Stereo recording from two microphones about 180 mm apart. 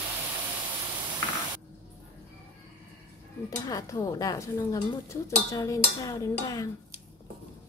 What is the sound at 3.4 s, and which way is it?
Speech, 20° left (ahead or behind).